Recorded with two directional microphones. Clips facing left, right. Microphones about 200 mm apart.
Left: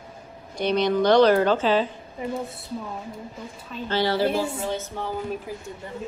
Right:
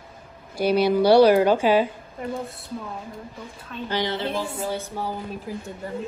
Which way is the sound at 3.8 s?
15° right (ahead or behind).